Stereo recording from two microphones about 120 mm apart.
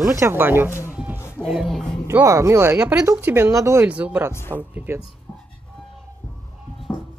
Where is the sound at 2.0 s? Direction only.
25° right (ahead or behind).